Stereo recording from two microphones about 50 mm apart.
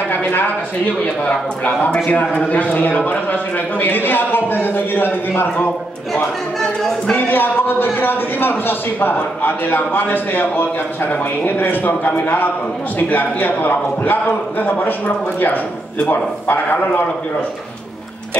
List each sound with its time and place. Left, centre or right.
0.1 s speech: left
1.2 s a man's voice: left
7.2 s a man's voice: left
16.1 s a man's voice: left